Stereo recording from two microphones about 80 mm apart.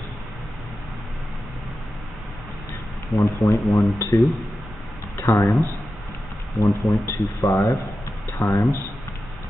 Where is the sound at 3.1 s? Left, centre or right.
Centre.